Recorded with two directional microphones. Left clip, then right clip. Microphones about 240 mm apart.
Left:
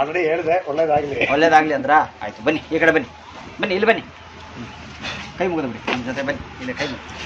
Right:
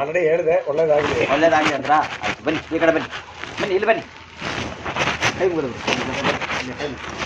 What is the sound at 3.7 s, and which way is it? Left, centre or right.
Speech, left.